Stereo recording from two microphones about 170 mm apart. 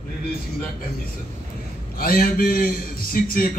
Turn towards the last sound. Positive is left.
turn(degrees=55)  # may be behind; listen again after turning